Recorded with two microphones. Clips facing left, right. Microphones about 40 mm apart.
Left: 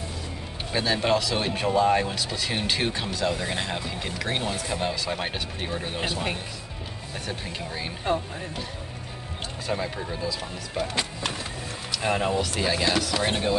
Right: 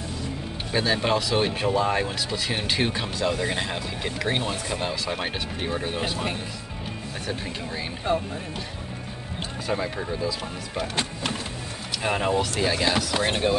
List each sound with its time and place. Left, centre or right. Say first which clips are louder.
0.7 s speech: even; centre
7.2 s speech: right 2 dB; centre
9.7 s speech: right 2 dB; centre
11.9 s speech: right 1 dB; centre
13.3 s speech: right 3 dB; right